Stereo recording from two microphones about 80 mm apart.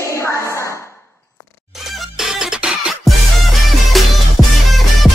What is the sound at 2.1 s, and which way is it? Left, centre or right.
Music, centre.